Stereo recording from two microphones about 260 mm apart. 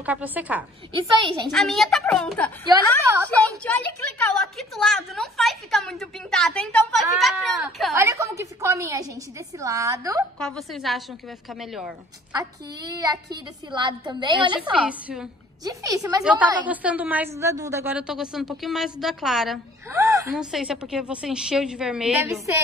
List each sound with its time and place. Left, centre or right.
0.0 s a woman's voice: centre
10.5 s a woman's voice: centre
12.3 s a woman's voice: centre
14.6 s a woman's voice: centre